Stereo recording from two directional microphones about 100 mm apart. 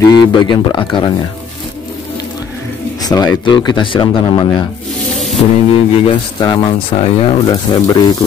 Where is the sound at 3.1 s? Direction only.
40° left (ahead or behind).